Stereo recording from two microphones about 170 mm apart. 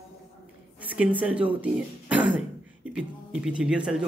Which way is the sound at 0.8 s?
5° right (ahead or behind).